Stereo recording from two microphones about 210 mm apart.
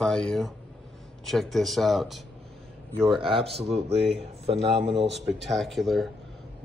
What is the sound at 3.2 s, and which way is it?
Speech, 25° right (ahead or behind).